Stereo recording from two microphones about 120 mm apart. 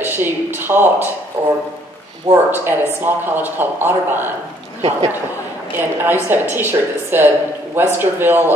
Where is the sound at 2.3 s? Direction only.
50° right (ahead or behind).